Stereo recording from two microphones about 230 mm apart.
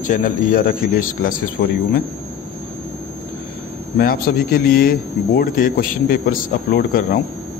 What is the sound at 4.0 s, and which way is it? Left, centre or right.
Speech, left.